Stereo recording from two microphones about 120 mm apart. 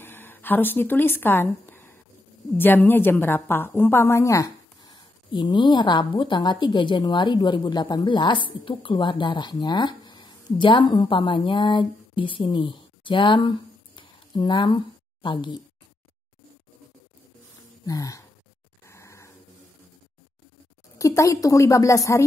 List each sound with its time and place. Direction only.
0.0 s a woman's voice: 15° left (ahead or behind)
4.9 s a woman's voice: 40° left (ahead or behind)
17.8 s a woman's voice: 30° left (ahead or behind)
18.9 s dog: 25° left (ahead or behind)
21.0 s a woman's voice: 25° left (ahead or behind)